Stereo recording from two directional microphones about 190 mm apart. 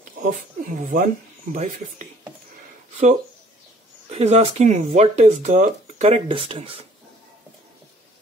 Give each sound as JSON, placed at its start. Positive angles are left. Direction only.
{"t": 0.2, "sound": "speech", "side_deg": -45}
{"t": 4.1, "sound": "speech", "side_deg": -35}